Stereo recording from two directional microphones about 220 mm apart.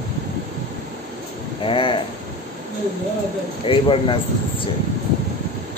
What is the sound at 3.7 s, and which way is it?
Speech, 25° left (ahead or behind).